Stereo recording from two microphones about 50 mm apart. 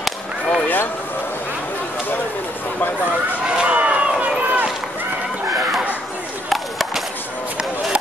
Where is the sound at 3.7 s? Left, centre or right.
Right.